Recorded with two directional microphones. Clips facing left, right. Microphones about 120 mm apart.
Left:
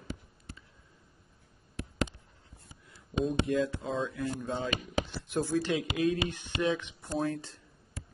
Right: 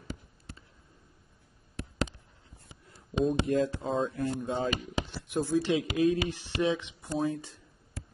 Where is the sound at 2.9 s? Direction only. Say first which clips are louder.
Right 3 dB; 35° right (ahead or behind).